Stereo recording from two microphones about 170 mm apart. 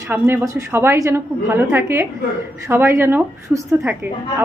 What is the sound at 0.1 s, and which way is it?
A woman's voice, 10° right (ahead or behind).